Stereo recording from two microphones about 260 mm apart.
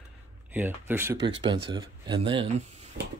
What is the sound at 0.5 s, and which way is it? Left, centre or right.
Speech, centre.